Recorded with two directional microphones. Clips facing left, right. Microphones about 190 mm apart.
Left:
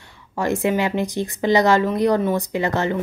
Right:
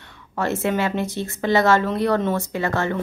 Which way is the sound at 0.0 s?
10° left (ahead or behind).